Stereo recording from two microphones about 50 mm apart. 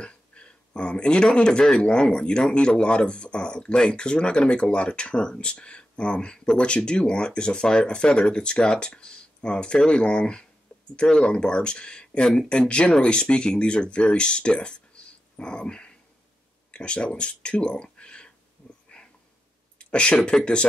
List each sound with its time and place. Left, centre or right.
0.0 s speech: left
18.6 s dog: left
19.9 s speech: centre